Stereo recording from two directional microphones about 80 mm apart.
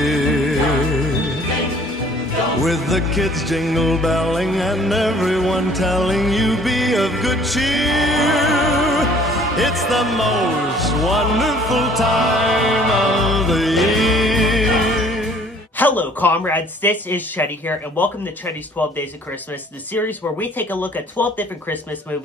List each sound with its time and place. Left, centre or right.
0.0 s music: centre
2.6 s music: centre
15.8 s speech: left
19.9 s speech: left